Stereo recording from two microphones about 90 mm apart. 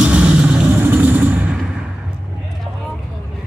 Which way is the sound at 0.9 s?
15° right (ahead or behind).